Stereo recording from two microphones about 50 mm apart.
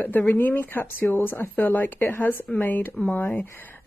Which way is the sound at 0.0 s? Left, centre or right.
Left.